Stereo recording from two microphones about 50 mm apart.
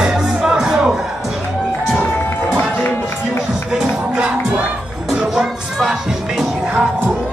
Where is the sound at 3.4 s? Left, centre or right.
Centre.